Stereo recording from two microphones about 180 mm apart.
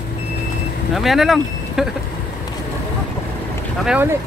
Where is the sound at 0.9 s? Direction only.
Centre (ahead or behind).